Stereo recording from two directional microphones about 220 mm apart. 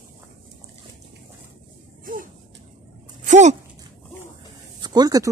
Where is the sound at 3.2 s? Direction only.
30° right (ahead or behind).